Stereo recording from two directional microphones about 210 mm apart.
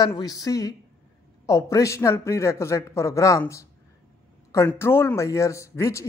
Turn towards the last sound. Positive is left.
turn(degrees=15)  # may be behind; listen again after turning